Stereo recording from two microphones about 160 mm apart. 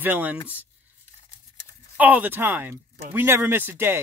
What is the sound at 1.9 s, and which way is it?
Speech, 10° right (ahead or behind).